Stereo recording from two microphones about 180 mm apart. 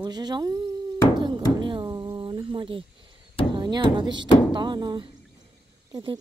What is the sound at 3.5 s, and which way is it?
Speech, 25° right (ahead or behind).